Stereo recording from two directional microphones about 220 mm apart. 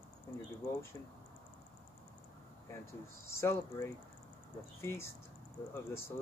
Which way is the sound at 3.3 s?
10° left (ahead or behind).